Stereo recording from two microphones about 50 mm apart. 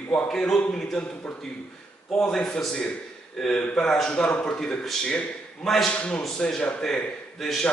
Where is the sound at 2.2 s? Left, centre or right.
Centre.